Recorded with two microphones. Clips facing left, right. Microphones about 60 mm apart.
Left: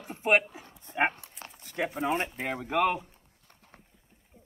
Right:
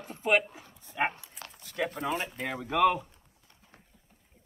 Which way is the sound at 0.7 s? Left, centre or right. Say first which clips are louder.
Left 3 dB; left.